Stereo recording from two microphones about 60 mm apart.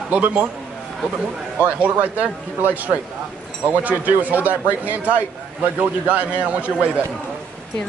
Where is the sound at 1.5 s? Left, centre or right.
Right.